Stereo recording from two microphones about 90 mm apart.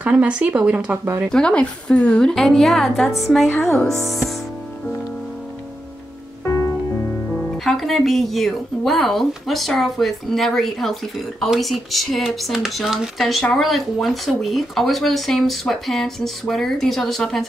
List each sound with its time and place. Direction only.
0.0 s speech: 15° right (ahead or behind)
1.0 s speech: 30° right (ahead or behind)
1.3 s speech: 10° left (ahead or behind)
7.5 s speech: centre (ahead or behind)